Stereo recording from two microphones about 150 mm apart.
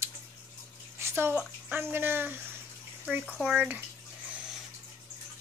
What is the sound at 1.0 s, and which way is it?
Speech, 15° right (ahead or behind).